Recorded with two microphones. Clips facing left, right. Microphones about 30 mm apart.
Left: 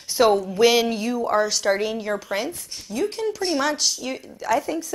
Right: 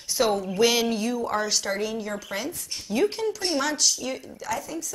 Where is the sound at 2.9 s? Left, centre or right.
Centre.